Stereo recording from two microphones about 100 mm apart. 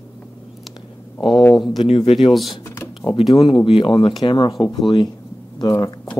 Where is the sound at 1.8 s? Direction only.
70° left (ahead or behind).